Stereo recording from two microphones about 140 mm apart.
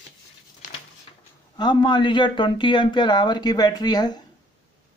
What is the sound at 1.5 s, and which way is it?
Speech, 30° left (ahead or behind).